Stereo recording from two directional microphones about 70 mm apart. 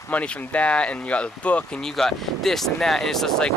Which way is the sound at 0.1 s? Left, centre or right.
Centre.